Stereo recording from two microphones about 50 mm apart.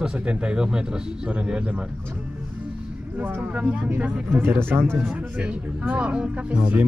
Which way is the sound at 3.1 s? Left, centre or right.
Right.